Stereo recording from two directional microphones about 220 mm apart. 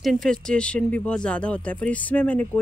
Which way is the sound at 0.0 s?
Centre (ahead or behind).